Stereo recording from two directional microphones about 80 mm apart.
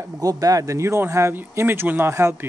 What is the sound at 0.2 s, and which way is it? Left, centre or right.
A man's voice, right.